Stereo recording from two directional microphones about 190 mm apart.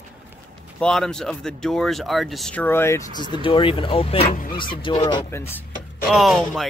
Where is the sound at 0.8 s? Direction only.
5° left (ahead or behind).